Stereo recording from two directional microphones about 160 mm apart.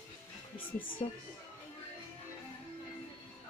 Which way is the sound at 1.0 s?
40° left (ahead or behind).